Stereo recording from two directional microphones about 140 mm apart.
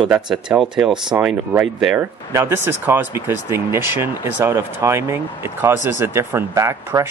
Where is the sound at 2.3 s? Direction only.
20° right (ahead or behind).